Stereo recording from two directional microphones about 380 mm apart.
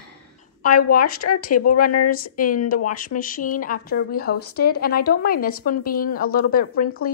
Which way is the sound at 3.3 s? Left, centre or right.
Left.